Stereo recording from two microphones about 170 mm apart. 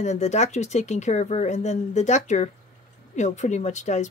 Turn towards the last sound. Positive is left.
turn(degrees=45)  # may be behind; listen again after turning